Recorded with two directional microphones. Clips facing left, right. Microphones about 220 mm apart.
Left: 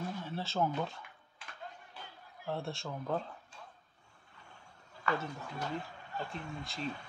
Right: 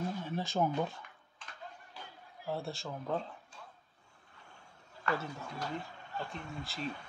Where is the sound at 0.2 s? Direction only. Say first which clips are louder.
Even; 15° right (ahead or behind).